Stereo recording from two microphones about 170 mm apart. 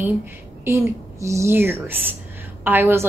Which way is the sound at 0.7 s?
15° right (ahead or behind).